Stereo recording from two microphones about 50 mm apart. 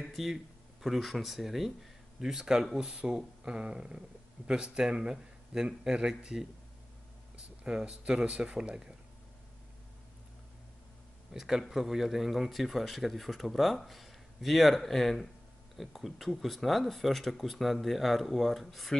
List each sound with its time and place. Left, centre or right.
0.0 s speech: centre
11.3 s speech: centre